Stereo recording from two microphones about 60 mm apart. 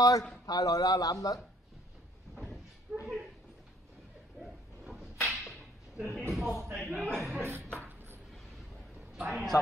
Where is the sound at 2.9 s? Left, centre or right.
Centre.